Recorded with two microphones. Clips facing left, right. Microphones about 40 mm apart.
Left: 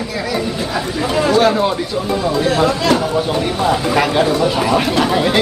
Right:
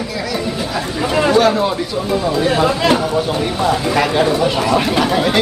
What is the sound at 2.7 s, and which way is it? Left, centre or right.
Speech, centre.